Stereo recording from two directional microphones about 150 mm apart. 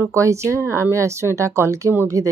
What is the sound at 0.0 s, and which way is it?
Speech, 20° right (ahead or behind).